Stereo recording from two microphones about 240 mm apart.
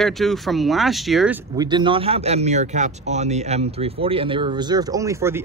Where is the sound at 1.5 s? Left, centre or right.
Centre.